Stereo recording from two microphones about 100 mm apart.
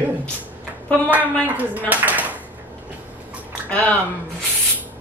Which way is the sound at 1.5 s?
15° right (ahead or behind).